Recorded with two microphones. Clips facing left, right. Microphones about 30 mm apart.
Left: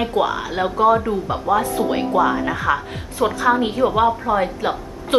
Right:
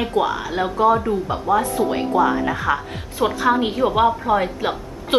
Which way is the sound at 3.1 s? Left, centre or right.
Centre.